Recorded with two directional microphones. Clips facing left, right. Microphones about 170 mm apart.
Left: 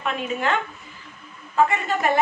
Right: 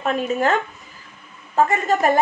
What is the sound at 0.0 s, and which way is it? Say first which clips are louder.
A woman's voice: right 5 dB; 40° right (ahead or behind).